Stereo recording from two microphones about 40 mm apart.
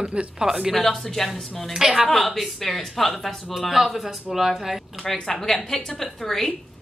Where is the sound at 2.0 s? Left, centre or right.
Centre.